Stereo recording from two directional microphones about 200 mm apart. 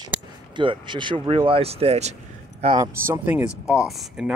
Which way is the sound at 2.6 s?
20° right (ahead or behind).